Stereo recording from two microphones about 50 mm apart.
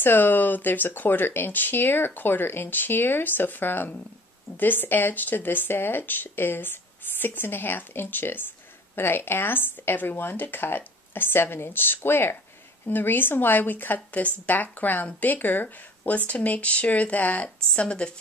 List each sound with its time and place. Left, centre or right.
0.0 s speech: left